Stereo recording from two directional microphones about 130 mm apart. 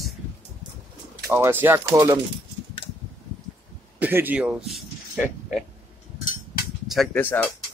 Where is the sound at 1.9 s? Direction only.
30° right (ahead or behind).